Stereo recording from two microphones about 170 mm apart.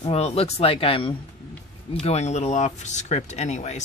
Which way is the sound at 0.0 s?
35° left (ahead or behind).